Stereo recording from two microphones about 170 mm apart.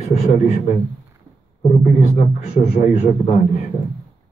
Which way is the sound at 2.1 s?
40° left (ahead or behind).